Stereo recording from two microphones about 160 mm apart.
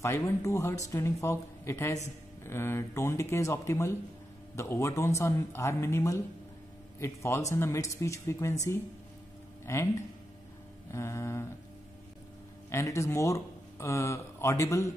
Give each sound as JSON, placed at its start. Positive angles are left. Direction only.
{"t": 0.0, "sound": "speech", "side_deg": 15}
{"t": 10.9, "sound": "speech", "side_deg": 20}
{"t": 12.6, "sound": "speech", "side_deg": 20}